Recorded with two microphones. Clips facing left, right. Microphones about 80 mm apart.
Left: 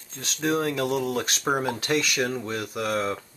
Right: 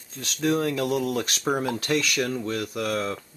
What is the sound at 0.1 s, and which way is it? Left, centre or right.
Speech, centre.